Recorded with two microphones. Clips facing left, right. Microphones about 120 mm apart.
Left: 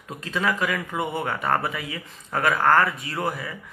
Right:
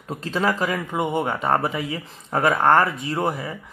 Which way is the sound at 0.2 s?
30° right (ahead or behind).